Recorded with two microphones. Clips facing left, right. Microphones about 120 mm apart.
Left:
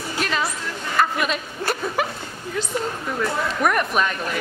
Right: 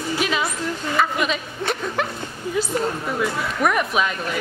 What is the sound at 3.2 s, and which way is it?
Speech, centre (ahead or behind).